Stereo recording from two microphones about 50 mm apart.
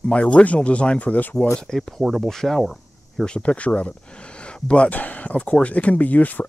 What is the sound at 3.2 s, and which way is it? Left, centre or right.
Speech, left.